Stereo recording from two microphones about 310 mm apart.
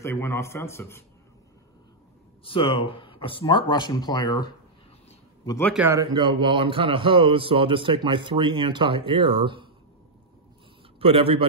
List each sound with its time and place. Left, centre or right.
0.0 s speech: centre
2.4 s speech: centre
5.8 s a man's voice: centre
11.0 s a man's voice: centre